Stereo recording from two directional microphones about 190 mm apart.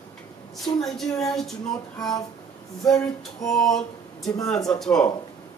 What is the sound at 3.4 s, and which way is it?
Speech, centre (ahead or behind).